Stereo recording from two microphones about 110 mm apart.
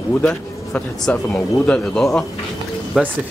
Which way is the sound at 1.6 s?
5° left (ahead or behind).